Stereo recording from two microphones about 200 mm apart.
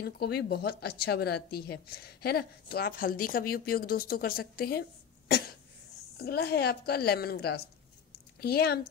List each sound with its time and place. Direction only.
0.0 s a woman's voice: 50° left (ahead or behind)
6.1 s a woman's voice: 50° left (ahead or behind)